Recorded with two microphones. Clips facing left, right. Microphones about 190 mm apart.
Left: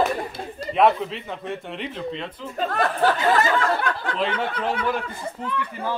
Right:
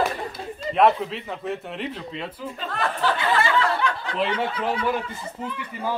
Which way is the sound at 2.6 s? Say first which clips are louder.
Left 5 dB; 45° left (ahead or behind).